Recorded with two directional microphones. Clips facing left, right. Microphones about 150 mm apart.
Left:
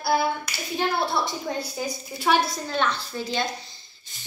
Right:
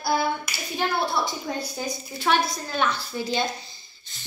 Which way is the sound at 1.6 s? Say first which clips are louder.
Even; 5° left (ahead or behind).